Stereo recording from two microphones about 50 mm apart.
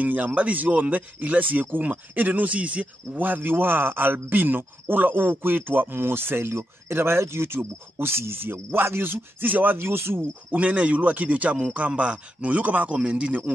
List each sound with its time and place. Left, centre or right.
0.0 s speech: right
10.5 s speech: right